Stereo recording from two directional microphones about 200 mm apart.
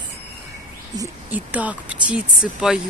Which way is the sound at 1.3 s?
10° right (ahead or behind).